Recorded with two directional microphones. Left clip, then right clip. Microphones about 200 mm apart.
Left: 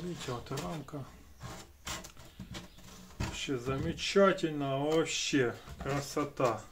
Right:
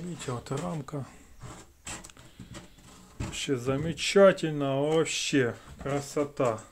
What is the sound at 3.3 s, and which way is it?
Speech, 50° right (ahead or behind).